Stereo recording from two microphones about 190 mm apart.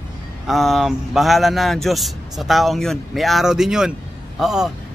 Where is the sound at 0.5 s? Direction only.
Centre (ahead or behind).